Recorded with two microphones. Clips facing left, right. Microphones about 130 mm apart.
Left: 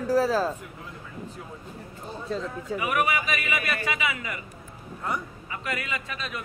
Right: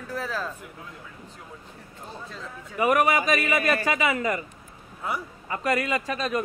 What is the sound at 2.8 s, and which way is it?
A man's voice, 40° right (ahead or behind).